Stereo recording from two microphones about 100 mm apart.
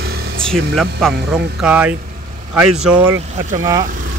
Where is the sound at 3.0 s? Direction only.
25° right (ahead or behind).